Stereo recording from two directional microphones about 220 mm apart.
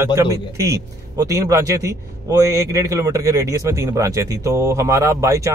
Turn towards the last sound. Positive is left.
turn(degrees=-15)  # may be behind; listen again after turning